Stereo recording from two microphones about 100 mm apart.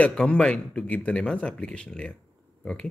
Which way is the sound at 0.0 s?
10° left (ahead or behind).